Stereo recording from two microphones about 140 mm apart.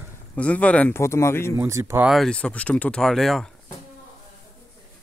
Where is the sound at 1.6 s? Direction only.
20° right (ahead or behind).